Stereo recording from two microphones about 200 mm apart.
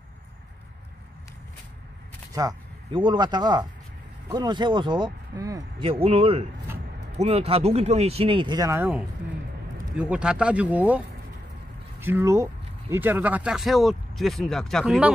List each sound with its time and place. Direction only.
2.3 s speech: 20° right (ahead or behind)
5.9 s speech: 30° right (ahead or behind); by 11.0 s 5° right (ahead or behind)
12.0 s speech: 10° right (ahead or behind)